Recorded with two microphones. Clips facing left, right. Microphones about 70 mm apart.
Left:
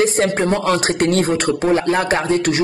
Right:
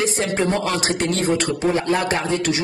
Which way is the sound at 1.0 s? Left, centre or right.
Left.